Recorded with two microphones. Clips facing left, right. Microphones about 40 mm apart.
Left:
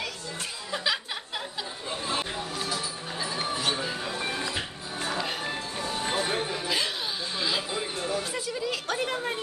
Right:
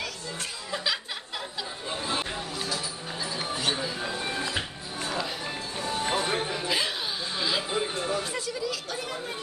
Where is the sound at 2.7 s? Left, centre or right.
Left.